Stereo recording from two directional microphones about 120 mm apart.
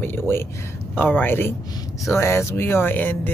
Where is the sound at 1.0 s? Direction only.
15° left (ahead or behind).